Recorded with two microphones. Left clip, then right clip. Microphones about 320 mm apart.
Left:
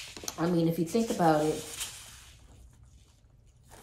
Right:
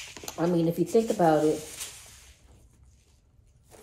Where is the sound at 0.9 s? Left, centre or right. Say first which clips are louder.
Right 5 dB; centre.